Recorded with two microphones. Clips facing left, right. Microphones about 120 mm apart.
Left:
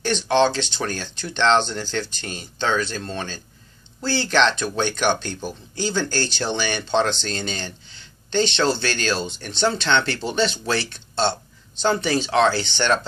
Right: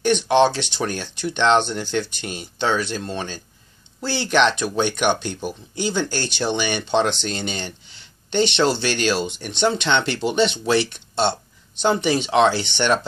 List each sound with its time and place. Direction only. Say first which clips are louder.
0.0 s speech: right 2 dB; 15° right (ahead or behind)